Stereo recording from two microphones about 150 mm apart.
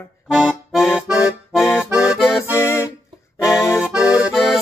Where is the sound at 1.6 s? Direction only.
15° left (ahead or behind).